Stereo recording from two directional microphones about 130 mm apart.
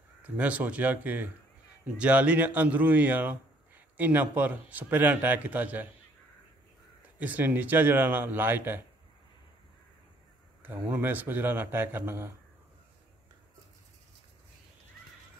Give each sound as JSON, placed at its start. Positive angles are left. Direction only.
{"t": 0.4, "sound": "a man's voice", "side_deg": -10}
{"t": 7.2, "sound": "a man's voice", "side_deg": -10}
{"t": 10.6, "sound": "a man's voice", "side_deg": -15}